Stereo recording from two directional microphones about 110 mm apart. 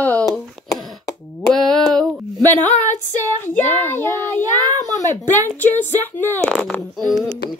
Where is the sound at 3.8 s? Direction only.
20° left (ahead or behind).